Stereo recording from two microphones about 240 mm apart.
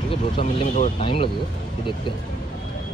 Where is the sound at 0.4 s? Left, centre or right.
Left.